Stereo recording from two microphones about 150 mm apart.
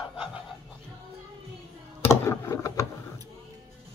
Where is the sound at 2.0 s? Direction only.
15° left (ahead or behind).